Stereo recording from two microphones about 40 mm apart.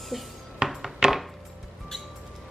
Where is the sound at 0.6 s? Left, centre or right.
Right.